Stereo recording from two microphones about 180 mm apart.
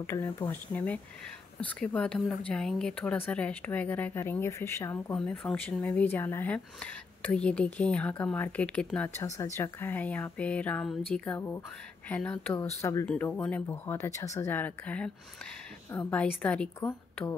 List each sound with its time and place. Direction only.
0.0 s speech: 15° left (ahead or behind)